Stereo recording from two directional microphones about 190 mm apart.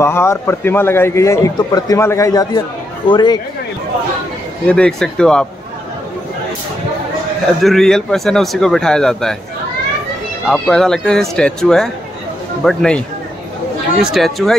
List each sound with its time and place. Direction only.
0.0 s a man's voice: 15° left (ahead or behind)
4.6 s a man's voice: 5° left (ahead or behind)
7.6 s a man's voice: centre (ahead or behind)
10.5 s a man's voice: 5° left (ahead or behind)
14.1 s a man's voice: centre (ahead or behind)